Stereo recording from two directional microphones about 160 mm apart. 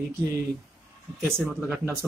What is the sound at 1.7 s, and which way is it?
Speech, 15° right (ahead or behind).